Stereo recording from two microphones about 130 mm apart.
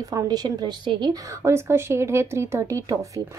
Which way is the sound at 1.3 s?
20° right (ahead or behind).